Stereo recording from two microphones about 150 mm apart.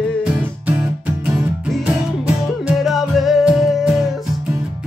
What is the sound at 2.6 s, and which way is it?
Music, centre (ahead or behind).